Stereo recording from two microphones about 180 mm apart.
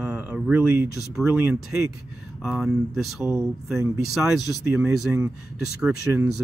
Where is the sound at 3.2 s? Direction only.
15° right (ahead or behind).